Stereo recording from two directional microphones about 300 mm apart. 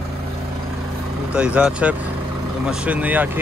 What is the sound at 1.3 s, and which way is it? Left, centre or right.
Speech, centre.